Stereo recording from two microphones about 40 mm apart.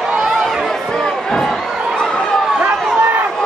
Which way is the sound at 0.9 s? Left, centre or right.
Centre.